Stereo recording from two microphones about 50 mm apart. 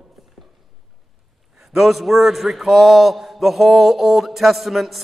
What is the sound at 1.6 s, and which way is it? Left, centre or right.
A man's voice, centre.